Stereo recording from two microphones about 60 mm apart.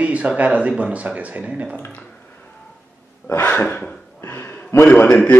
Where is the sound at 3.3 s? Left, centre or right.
Left.